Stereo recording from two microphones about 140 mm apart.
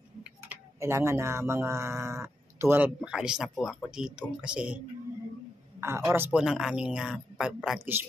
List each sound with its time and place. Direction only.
0.7 s speech: 20° right (ahead or behind)
5.8 s speech: 20° right (ahead or behind)